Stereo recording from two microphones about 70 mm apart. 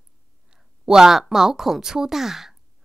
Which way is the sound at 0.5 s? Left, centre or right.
Centre.